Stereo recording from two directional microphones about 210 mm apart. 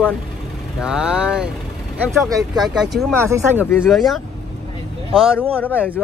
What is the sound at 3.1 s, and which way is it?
Speech, 10° right (ahead or behind).